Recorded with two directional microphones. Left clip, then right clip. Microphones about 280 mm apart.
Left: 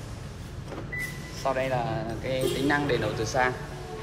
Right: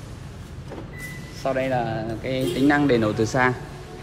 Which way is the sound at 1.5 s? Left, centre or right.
Right.